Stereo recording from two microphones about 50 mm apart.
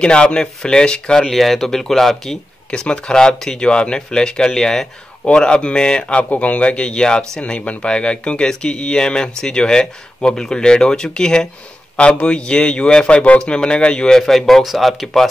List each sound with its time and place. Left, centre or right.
0.0 s speech: centre
1.2 s speech: centre
2.7 s speech: centre